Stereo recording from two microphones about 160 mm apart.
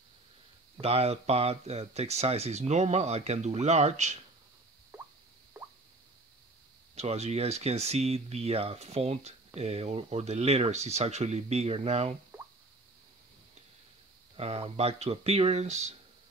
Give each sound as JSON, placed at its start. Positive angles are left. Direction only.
{"t": 0.7, "sound": "speech", "side_deg": -40}
{"t": 5.5, "sound": "plop", "side_deg": -15}
{"t": 7.0, "sound": "speech", "side_deg": -40}
{"t": 14.3, "sound": "speech", "side_deg": -40}